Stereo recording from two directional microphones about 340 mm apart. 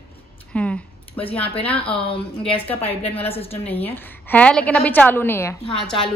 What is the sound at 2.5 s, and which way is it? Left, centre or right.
Speech, centre.